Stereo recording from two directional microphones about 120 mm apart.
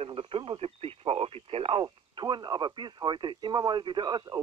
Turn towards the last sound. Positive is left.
turn(degrees=-40)  # may be behind; listen again after turning